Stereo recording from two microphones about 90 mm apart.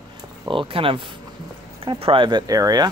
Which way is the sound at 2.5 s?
45° right (ahead or behind).